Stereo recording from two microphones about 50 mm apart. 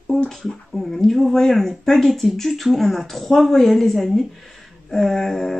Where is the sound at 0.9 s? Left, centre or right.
Centre.